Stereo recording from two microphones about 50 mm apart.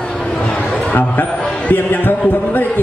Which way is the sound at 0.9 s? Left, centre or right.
Left.